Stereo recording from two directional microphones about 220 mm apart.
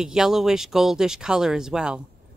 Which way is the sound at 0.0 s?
5° right (ahead or behind).